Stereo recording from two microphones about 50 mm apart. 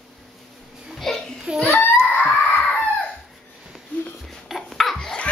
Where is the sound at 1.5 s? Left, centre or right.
Left.